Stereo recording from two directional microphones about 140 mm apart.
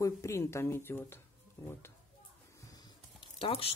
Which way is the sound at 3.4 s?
45° left (ahead or behind).